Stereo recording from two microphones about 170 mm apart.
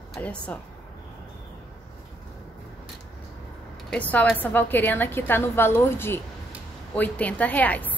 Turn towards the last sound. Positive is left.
turn(degrees=10)  # may be behind; listen again after turning